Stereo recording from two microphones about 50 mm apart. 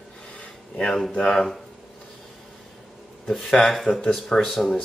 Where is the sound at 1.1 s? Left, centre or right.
Centre.